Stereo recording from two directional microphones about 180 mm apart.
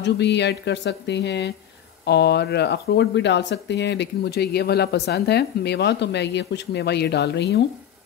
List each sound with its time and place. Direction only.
0.0 s speech: 75° left (ahead or behind)